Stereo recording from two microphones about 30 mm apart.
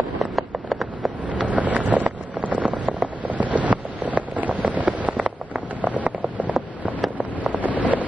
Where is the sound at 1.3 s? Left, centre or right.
Right.